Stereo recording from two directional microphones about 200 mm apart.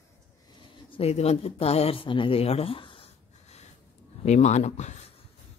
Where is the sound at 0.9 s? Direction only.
30° left (ahead or behind).